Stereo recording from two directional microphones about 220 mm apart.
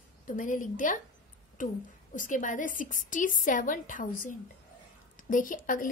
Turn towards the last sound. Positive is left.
turn(degrees=35)  # may be behind; listen again after turning